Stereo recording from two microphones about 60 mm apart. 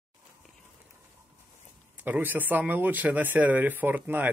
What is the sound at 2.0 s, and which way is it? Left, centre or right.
Speech, right.